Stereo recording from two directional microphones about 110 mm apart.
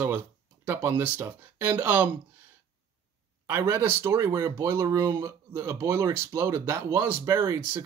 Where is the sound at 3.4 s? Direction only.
25° right (ahead or behind).